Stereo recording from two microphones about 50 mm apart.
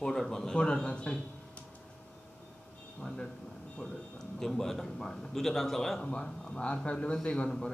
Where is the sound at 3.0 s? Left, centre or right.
Centre.